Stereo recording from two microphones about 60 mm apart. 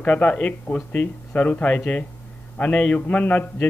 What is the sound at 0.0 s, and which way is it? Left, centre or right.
A man's voice, left.